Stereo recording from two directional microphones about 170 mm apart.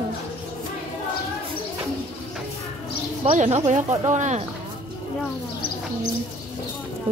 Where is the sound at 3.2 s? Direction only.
40° right (ahead or behind).